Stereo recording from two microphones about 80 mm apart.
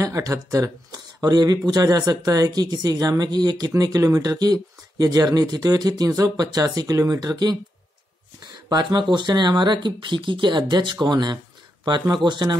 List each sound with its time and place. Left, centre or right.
0.0 s speech: right
8.6 s speech: right